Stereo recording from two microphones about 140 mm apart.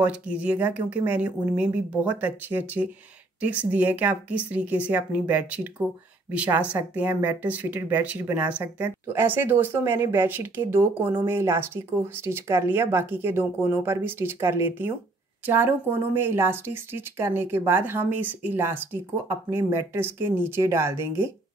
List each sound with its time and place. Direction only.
0.0 s speech: 10° right (ahead or behind)